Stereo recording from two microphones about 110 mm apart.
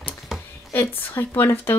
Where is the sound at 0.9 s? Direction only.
20° left (ahead or behind).